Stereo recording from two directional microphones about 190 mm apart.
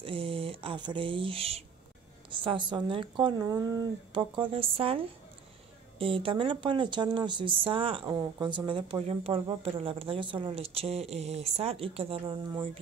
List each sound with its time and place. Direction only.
0.0 s a woman's voice: 30° right (ahead or behind)
8.0 s a woman's voice: 20° right (ahead or behind)